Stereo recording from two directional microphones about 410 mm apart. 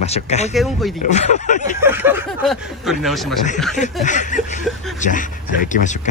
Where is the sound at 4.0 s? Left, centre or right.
Centre.